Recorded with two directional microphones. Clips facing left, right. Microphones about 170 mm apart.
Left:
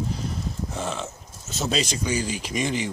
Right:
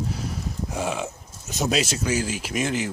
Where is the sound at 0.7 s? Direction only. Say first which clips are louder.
Right 6 dB; 10° right (ahead or behind).